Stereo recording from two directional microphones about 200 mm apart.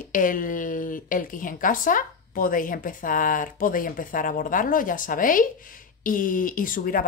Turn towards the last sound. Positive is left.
turn(degrees=45)  # may be behind; listen again after turning